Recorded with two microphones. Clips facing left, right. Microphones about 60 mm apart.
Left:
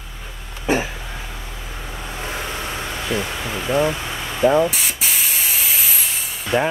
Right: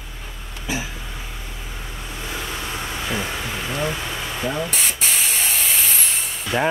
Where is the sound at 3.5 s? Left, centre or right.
Centre.